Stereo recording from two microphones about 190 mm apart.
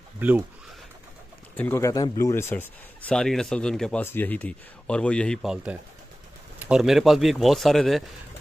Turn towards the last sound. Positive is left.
turn(degrees=0)  # may be behind; listen again after turning